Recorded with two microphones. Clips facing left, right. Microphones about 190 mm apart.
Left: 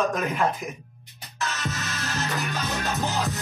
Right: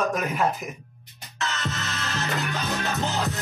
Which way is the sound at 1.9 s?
60° right (ahead or behind).